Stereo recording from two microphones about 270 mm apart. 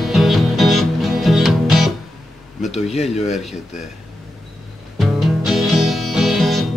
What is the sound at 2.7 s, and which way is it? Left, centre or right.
Speech, left.